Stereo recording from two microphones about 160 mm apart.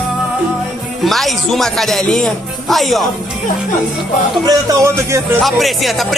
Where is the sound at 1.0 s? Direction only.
Centre (ahead or behind).